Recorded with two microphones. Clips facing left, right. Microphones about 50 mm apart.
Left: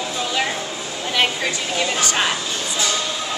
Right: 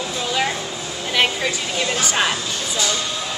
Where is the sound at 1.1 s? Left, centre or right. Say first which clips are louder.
Right 1 dB; centre.